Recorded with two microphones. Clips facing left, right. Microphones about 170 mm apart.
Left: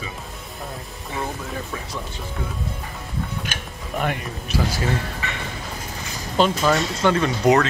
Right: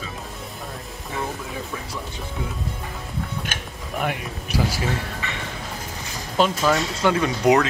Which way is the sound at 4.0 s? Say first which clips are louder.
Left 1 dB; 10° right (ahead or behind).